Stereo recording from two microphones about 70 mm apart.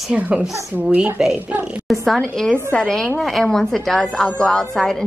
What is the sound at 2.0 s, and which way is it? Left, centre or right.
A woman's voice, centre.